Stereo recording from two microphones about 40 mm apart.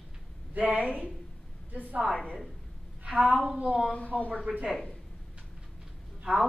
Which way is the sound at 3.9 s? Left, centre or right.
Left.